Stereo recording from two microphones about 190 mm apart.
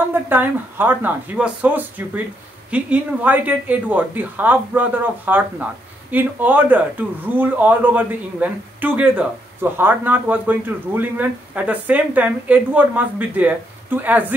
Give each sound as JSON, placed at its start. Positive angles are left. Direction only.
{"t": 0.1, "sound": "speech", "side_deg": -10}